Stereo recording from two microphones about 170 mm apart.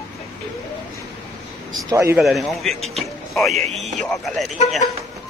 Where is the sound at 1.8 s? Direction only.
15° right (ahead or behind).